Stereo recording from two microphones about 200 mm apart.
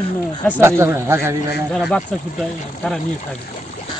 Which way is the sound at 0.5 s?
10° right (ahead or behind).